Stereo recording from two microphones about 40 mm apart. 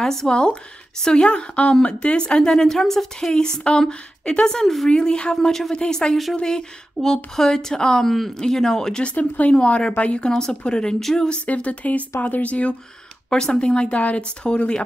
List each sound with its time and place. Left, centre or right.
0.0 s speech: centre
0.3 s a woman's voice: left
2.5 s a woman's voice: centre
4.6 s a woman's voice: centre
4.9 s a woman's voice: left
5.3 s a woman's voice: centre
9.0 s a woman's voice: left
10.3 s a woman's voice: centre
11.0 s a woman's voice: centre
11.4 s speech: left
13.3 s a woman's voice: centre; by 14.2 s left
14.4 s a woman's voice: centre